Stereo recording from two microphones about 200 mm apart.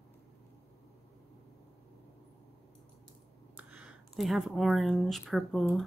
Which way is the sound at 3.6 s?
5° right (ahead or behind).